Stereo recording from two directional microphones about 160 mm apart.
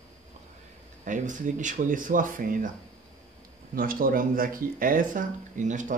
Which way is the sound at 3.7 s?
60° right (ahead or behind).